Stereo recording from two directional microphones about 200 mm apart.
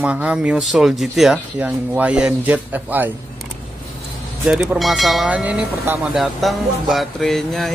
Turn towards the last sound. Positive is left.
turn(degrees=0)  # may be behind; listen again after turning